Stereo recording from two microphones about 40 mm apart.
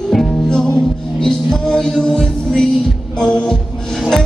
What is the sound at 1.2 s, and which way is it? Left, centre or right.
Music, centre.